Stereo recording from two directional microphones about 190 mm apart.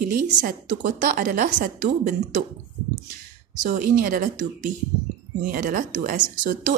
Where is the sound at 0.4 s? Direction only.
50° right (ahead or behind).